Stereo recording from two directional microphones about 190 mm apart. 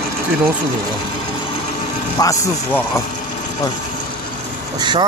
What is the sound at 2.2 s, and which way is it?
Speech, 15° left (ahead or behind).